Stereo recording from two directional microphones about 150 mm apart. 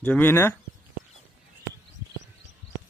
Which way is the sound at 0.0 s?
10° left (ahead or behind).